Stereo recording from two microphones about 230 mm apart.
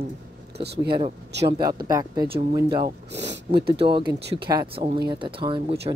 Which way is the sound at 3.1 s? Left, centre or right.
Right.